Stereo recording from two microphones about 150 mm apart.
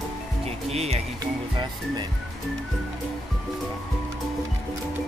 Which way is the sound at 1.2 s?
30° right (ahead or behind).